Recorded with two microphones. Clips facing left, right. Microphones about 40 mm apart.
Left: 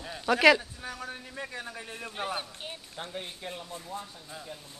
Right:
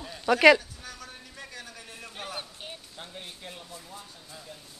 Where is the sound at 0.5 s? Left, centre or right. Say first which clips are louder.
Even; left.